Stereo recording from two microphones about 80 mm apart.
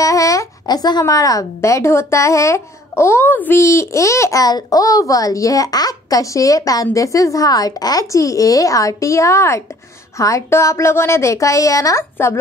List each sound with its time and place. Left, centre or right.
0.0 s a sound: left
1.0 s a woman's voice: left
12.0 s a woman's voice: left